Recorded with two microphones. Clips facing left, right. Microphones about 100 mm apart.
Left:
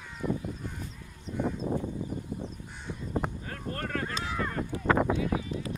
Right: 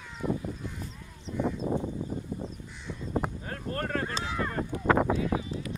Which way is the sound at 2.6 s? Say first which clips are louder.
Even; 50° left (ahead or behind).